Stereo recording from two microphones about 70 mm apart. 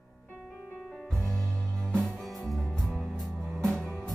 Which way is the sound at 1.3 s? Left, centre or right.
Centre.